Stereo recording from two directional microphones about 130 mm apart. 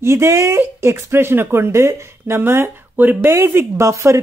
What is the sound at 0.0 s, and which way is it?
Speech, 20° right (ahead or behind).